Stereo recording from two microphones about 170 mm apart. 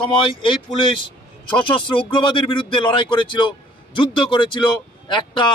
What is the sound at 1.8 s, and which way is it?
Speech, 30° left (ahead or behind).